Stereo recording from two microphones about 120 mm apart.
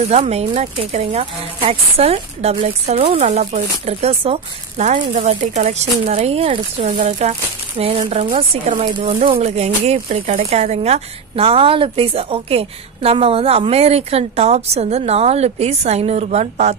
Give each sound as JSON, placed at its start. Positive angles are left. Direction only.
{"t": 0.1, "sound": "speech", "side_deg": -60}
{"t": 6.5, "sound": "speech", "side_deg": -90}
{"t": 7.0, "sound": "speech", "side_deg": -65}